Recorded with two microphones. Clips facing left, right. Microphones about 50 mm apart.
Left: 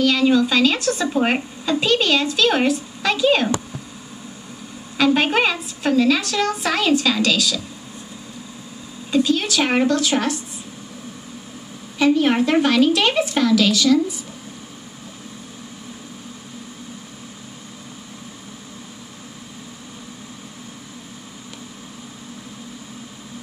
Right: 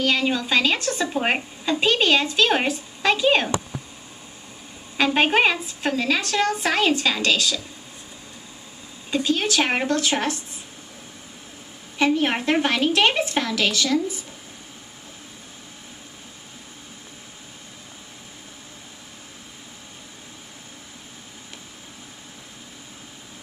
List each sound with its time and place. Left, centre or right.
0.0 s a woman's voice: right
4.9 s a woman's voice: right
9.1 s a woman's voice: right
12.0 s a woman's voice: right